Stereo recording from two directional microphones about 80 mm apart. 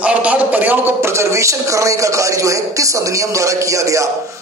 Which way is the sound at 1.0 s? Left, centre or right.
Right.